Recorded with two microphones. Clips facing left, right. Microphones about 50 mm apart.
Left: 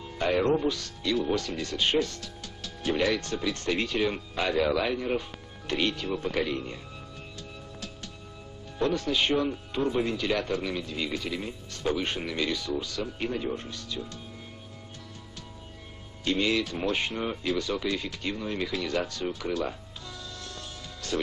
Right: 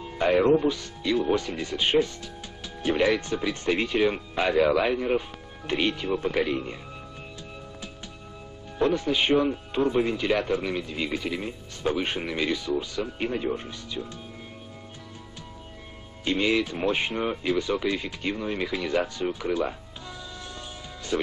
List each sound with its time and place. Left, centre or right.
0.0 s speech: centre
8.7 s speech: centre
16.3 s speech: centre
21.1 s speech: centre